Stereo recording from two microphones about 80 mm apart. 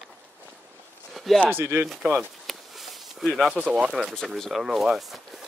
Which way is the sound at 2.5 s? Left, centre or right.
Centre.